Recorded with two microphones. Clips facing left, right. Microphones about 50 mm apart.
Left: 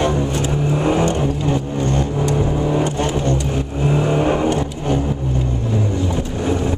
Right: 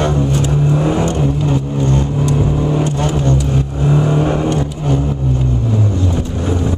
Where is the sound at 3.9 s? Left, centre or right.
Centre.